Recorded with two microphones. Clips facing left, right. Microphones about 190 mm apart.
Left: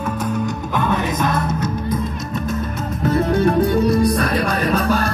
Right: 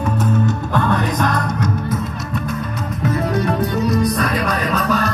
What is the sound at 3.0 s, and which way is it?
Music, 30° left (ahead or behind).